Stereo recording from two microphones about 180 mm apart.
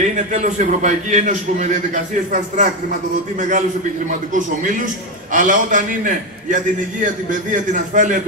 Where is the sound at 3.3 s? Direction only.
40° right (ahead or behind).